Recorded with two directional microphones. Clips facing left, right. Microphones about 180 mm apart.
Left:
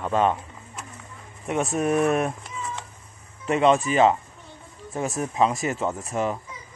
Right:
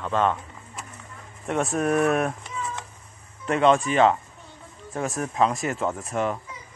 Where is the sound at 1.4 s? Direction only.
5° left (ahead or behind).